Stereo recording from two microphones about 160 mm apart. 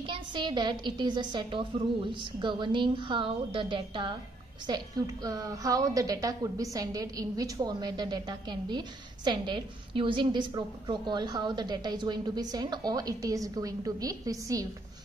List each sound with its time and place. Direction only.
0.0 s a woman's voice: 30° right (ahead or behind)